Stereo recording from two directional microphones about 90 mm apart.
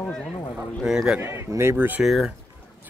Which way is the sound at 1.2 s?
30° right (ahead or behind).